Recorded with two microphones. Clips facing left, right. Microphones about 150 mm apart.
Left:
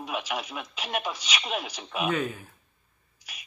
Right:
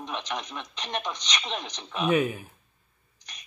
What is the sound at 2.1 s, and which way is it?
Speech, 15° right (ahead or behind).